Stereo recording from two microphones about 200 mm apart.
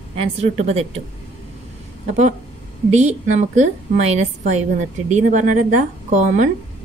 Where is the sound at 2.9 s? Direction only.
35° right (ahead or behind).